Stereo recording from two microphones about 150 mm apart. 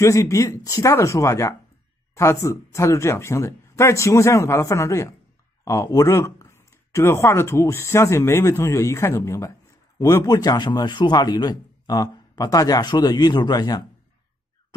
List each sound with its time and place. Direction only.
0.0 s speech: 20° left (ahead or behind)